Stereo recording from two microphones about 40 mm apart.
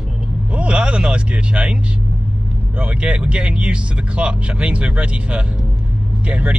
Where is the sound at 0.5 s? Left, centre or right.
Right.